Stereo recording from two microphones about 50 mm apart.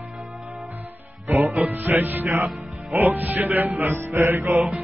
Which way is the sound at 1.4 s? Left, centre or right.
Right.